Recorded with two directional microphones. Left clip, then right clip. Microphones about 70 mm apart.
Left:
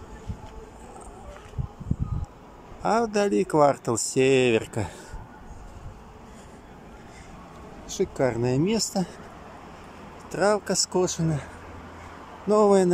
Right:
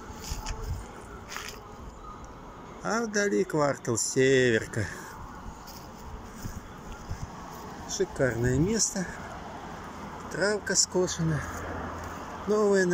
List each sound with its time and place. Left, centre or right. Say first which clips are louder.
2.8 s speech: left 5 dB; left
8.0 s speech: left 3 dB; left
10.3 s speech: left 4 dB; left
12.4 s speech: left 5 dB; left